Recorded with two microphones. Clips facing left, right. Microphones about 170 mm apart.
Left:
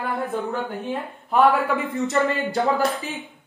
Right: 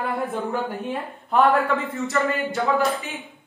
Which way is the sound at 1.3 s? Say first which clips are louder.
Left 1 dB; 5° left (ahead or behind).